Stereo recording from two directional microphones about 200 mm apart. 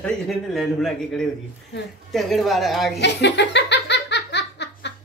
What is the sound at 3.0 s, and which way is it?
Laughter, 60° left (ahead or behind).